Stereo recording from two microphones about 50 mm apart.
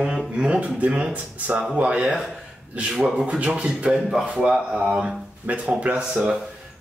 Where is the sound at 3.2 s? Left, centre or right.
Right.